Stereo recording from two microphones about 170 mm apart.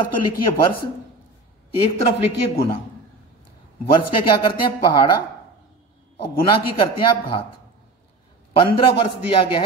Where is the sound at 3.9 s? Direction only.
25° left (ahead or behind).